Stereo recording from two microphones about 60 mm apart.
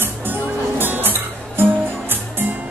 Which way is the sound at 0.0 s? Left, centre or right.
Right.